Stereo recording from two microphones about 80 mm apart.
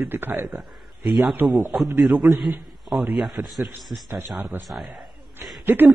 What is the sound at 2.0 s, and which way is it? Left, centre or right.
Speech, centre.